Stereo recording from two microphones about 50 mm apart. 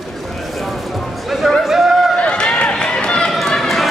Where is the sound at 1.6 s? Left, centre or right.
Centre.